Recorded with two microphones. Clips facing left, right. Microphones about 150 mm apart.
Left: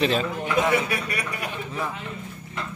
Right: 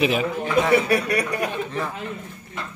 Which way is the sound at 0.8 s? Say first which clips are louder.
Right 8 dB; 40° right (ahead or behind).